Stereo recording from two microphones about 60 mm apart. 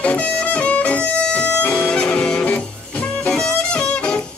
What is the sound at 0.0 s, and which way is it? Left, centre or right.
Music, left.